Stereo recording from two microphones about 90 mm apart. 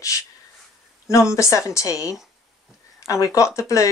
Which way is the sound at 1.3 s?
35° left (ahead or behind).